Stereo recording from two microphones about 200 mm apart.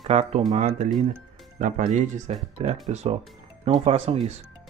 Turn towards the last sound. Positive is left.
turn(degrees=-30)  # may be behind; listen again after turning